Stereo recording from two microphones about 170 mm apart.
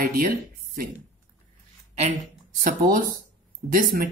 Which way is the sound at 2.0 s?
50° right (ahead or behind).